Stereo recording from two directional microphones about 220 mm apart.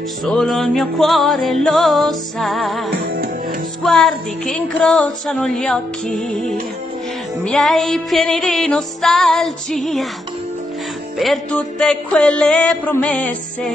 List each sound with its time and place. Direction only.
0.2 s music: centre (ahead or behind)
2.9 s music: 45° right (ahead or behind)
3.8 s music: centre (ahead or behind)
11.1 s music: centre (ahead or behind)